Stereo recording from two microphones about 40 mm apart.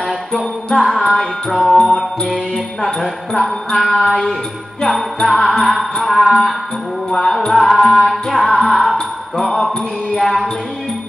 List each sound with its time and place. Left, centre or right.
0.7 s music: centre
1.0 s music: centre
1.6 s music: centre
7.1 s music: centre
7.4 s music: centre